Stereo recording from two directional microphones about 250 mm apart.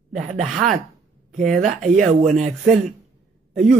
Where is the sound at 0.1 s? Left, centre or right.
Right.